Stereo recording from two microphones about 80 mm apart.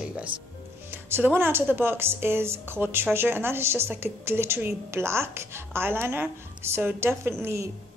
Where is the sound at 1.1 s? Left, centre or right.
Right.